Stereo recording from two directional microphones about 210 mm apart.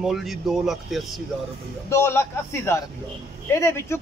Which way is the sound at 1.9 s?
10° left (ahead or behind).